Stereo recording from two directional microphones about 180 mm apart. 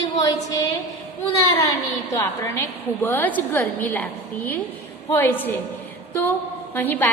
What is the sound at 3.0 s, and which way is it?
A woman's voice, 10° left (ahead or behind).